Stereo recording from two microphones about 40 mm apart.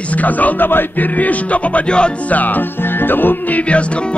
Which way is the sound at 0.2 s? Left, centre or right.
Left.